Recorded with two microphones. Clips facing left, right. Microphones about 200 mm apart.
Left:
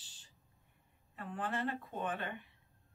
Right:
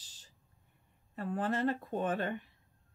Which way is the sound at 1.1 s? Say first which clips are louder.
Right 6 dB; 40° right (ahead or behind).